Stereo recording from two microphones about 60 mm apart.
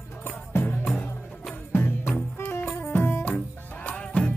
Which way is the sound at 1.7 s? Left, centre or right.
Left.